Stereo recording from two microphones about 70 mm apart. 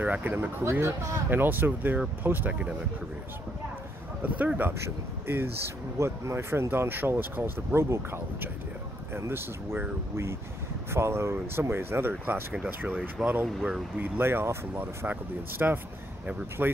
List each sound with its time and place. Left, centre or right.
0.0 s speech: right
0.7 s speech: right
1.3 s speech: right
4.2 s speech: right
12.5 s speech: centre; by 15.0 s right
15.0 s speech: right